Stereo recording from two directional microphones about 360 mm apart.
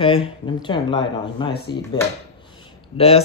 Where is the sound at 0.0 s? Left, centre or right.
Centre.